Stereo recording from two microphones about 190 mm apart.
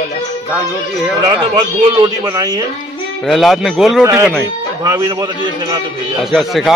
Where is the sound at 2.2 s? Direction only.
20° right (ahead or behind).